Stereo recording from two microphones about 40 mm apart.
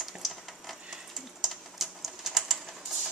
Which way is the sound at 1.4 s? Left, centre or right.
Centre.